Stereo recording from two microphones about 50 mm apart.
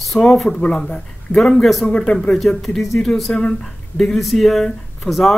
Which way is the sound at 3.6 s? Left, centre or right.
Centre.